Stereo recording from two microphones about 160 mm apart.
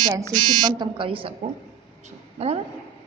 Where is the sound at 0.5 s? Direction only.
25° right (ahead or behind).